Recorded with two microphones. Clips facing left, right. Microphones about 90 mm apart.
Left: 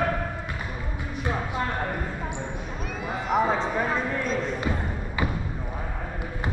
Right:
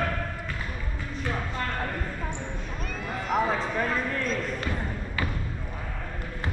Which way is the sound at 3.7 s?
15° left (ahead or behind).